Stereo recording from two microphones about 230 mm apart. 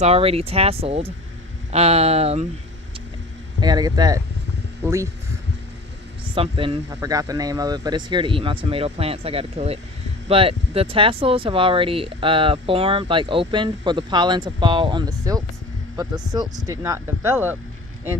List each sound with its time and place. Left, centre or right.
0.0 s speech: right
3.6 s speech: centre
6.3 s speech: right